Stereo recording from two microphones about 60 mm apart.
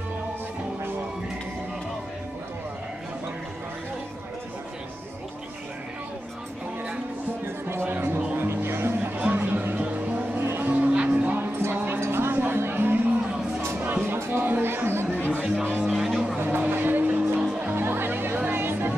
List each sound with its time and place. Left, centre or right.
7.6 s music: right
9.2 s music: right
11.3 s music: right
12.0 s a sound: right
13.7 s music: right
15.1 s chatter: right
15.8 s music: centre
16.5 s music: right
17.4 s music: centre
17.7 s music: right